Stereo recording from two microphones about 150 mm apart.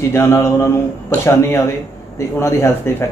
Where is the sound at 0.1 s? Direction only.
15° left (ahead or behind).